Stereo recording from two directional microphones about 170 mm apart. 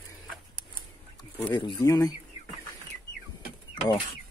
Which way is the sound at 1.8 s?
20° left (ahead or behind).